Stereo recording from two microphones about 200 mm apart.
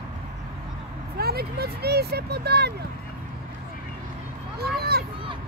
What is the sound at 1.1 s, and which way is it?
Speech, 50° right (ahead or behind).